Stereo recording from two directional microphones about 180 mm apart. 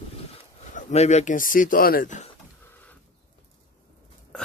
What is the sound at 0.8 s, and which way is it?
Speech, 40° left (ahead or behind).